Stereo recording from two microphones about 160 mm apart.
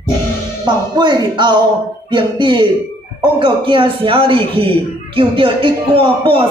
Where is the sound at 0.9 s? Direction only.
25° right (ahead or behind).